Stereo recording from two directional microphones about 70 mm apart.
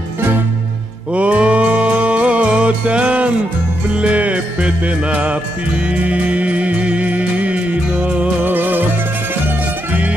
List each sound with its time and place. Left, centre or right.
1.1 s music: centre